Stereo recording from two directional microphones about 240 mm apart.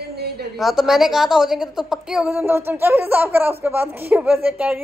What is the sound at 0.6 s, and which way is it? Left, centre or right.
A woman's voice, centre.